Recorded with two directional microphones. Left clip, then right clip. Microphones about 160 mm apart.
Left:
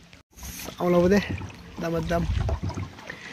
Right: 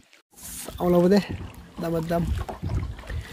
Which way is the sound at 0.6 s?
15° right (ahead or behind).